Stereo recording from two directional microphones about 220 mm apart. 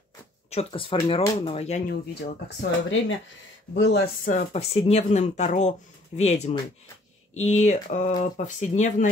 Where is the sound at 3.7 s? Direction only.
50° left (ahead or behind).